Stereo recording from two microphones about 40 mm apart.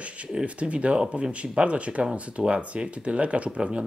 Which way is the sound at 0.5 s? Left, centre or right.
Right.